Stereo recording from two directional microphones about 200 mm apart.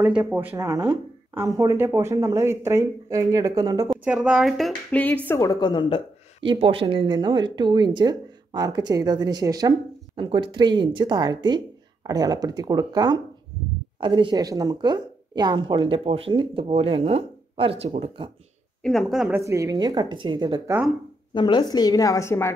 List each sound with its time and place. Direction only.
0.3 s speech: 10° right (ahead or behind)
3.9 s a woman's voice: 5° right (ahead or behind); by 6.0 s 25° left (ahead or behind)
6.4 s speech: 25° right (ahead or behind)
18.8 s speech: centre (ahead or behind); by 20.8 s 15° right (ahead or behind)
21.3 s a woman's voice: 25° left (ahead or behind)